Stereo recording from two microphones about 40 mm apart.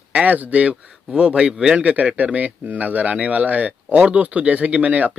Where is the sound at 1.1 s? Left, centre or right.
Right.